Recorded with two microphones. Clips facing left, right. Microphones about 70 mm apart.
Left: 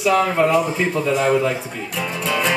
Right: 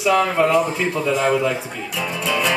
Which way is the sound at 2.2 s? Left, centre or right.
Centre.